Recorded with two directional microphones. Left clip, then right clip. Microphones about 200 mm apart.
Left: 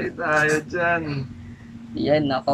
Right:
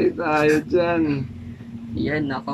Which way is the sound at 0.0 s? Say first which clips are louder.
Right 2 dB; 20° right (ahead or behind).